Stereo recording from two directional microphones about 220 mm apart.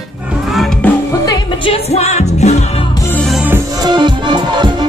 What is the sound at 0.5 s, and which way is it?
Music, centre (ahead or behind).